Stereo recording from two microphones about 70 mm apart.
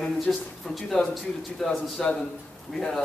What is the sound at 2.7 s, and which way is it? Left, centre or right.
Speech, centre.